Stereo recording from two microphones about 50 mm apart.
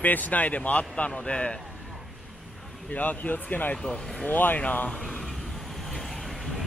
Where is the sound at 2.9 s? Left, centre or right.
Left.